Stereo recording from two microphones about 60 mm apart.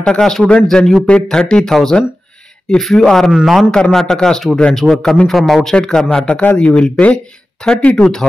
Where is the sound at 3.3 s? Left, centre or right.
Centre.